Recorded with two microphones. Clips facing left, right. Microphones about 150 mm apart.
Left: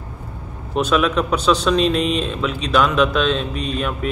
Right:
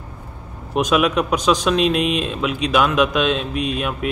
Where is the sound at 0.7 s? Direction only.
10° right (ahead or behind).